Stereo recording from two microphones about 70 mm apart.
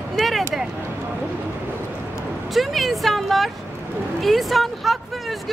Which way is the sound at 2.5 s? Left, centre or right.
Centre.